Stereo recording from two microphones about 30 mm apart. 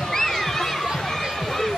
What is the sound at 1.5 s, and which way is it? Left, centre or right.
Run, centre.